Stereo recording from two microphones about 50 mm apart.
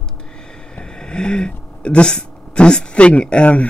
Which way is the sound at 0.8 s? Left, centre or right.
Centre.